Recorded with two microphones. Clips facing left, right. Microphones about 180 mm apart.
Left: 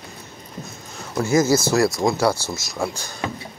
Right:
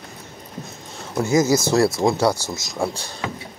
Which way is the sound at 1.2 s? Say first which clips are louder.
Even; 20° right (ahead or behind).